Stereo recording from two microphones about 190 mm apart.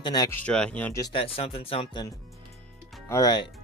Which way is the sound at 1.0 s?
30° left (ahead or behind).